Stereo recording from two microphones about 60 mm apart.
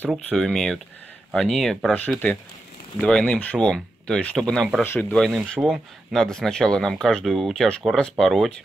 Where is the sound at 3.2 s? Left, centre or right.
Left.